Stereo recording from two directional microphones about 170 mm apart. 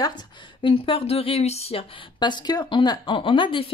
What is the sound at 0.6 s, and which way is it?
Speech, 30° left (ahead or behind).